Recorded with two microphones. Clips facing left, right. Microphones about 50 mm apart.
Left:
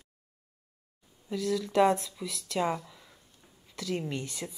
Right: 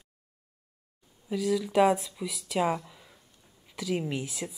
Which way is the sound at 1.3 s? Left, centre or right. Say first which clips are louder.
Right 2 dB; centre.